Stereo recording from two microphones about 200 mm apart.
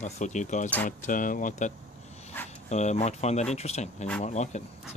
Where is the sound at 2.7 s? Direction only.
35° left (ahead or behind).